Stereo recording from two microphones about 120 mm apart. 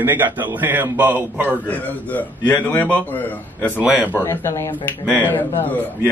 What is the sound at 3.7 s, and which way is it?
Speech, 10° right (ahead or behind).